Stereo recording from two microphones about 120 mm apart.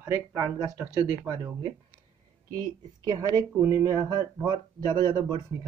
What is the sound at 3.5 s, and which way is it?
Speech, 25° right (ahead or behind).